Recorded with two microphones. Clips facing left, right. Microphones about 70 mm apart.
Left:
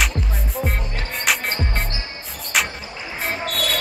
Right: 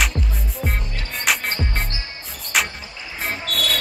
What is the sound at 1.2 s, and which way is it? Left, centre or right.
Music, centre.